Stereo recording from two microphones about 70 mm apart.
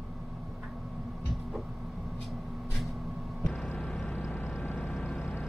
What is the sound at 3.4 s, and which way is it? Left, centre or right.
Vehicle, centre.